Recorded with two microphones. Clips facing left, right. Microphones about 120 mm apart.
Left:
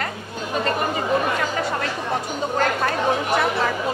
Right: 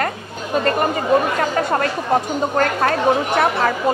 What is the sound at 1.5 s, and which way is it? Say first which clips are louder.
Speech: right 6 dB; 50° right (ahead or behind).